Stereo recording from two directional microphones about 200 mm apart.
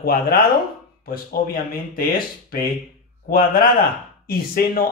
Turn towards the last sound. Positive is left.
turn(degrees=45)  # may be behind; listen again after turning